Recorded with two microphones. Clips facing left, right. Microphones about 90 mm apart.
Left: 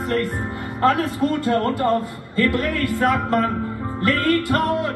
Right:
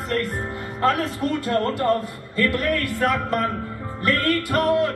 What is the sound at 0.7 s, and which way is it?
Speech, 15° left (ahead or behind).